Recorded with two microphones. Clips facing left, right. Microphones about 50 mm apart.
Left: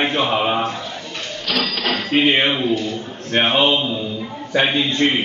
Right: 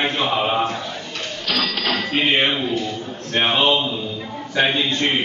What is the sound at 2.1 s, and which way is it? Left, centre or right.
Speech, left.